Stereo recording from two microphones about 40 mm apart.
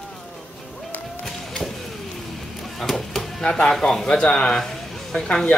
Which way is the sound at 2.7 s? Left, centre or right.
Centre.